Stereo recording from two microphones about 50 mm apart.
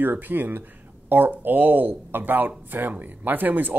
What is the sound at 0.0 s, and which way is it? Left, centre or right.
Speech, right.